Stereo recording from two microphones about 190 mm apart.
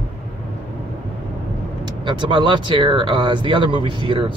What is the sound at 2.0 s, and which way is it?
Speech, 25° right (ahead or behind).